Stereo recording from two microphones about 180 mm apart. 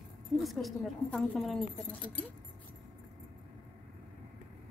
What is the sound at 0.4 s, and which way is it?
Speech, centre (ahead or behind).